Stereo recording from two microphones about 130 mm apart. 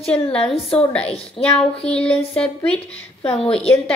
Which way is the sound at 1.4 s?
5° left (ahead or behind).